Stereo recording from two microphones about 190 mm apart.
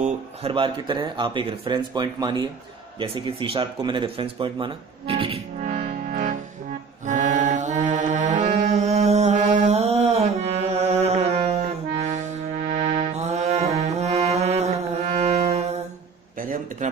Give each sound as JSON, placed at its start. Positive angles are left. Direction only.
{"t": 0.0, "sound": "speech", "side_deg": -30}
{"t": 5.6, "sound": "music", "side_deg": -45}
{"t": 16.3, "sound": "a sound", "side_deg": -45}